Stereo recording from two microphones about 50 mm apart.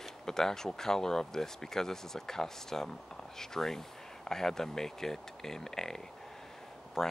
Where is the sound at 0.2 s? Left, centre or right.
Centre.